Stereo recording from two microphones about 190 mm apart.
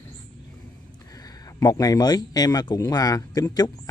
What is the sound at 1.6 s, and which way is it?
Speech, 20° left (ahead or behind).